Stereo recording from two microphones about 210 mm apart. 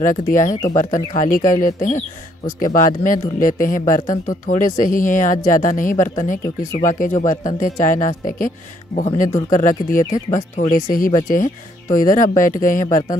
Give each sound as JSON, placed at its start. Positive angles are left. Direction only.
{"t": 0.0, "sound": "speech", "side_deg": 40}
{"t": 4.0, "sound": "speech", "side_deg": 20}
{"t": 4.5, "sound": "speech", "side_deg": 40}